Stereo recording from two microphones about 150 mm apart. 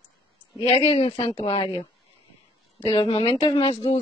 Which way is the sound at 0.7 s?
45° left (ahead or behind).